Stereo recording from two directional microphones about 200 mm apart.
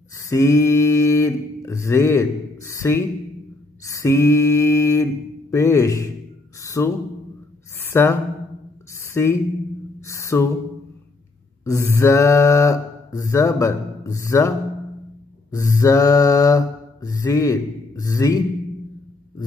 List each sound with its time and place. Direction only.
0.1 s speech: 15° left (ahead or behind)
6.6 s a sound: 15° left (ahead or behind)
7.9 s speech: 10° left (ahead or behind)
8.9 s a sound: 15° left (ahead or behind)
11.6 s mantra: 15° left (ahead or behind)
15.5 s mantra: 15° left (ahead or behind)